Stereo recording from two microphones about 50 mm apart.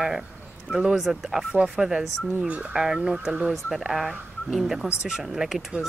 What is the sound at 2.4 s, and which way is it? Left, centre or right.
Speech, right.